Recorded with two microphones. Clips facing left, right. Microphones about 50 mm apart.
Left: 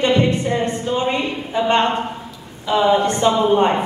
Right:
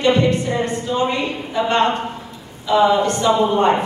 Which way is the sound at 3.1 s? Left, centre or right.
Left.